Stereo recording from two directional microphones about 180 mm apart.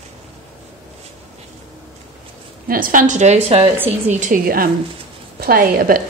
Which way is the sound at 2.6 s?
50° right (ahead or behind).